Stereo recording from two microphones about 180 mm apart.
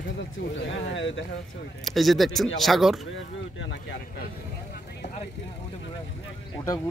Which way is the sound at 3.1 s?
90° left.